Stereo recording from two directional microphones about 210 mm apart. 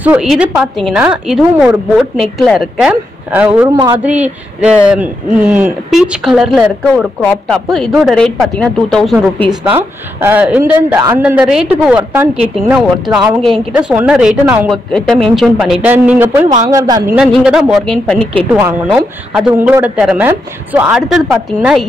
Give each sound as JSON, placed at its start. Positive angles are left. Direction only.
{"t": 0.0, "sound": "speech", "side_deg": -5}
{"t": 13.4, "sound": "a woman's voice", "side_deg": 0}
{"t": 14.7, "sound": "a woman's voice", "side_deg": 0}
{"t": 17.4, "sound": "speech", "side_deg": -5}
{"t": 18.5, "sound": "a woman's voice", "side_deg": -10}